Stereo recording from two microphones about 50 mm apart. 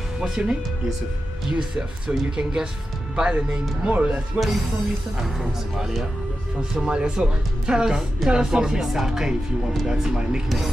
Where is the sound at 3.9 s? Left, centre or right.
Right.